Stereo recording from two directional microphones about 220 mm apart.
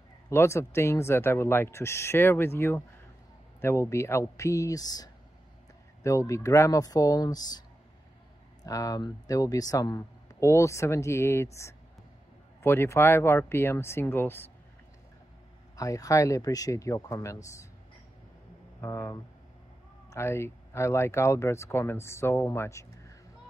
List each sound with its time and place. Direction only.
0.3 s speech: 10° left (ahead or behind)
8.6 s speech: 15° left (ahead or behind)
15.7 s speech: 15° left (ahead or behind)
18.8 s speech: 10° left (ahead or behind)